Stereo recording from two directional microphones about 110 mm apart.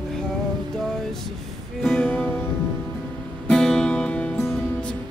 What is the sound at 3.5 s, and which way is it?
Music, 5° left (ahead or behind).